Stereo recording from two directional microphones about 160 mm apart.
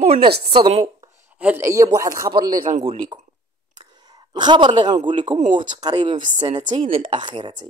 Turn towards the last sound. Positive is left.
turn(degrees=-30)  # may be behind; listen again after turning